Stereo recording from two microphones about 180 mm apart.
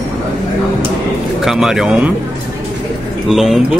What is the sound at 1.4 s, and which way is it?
Speech, centre (ahead or behind).